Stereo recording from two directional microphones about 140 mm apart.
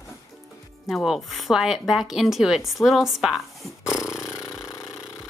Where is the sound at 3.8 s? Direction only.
20° left (ahead or behind).